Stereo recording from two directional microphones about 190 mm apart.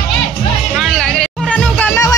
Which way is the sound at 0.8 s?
Centre (ahead or behind).